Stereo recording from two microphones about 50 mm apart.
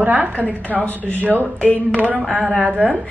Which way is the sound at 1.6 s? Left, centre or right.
Left.